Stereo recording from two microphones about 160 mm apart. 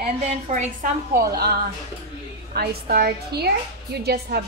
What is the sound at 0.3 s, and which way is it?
Speech, 45° right (ahead or behind).